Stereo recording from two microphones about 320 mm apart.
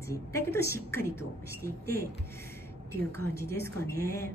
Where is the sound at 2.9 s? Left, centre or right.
Centre.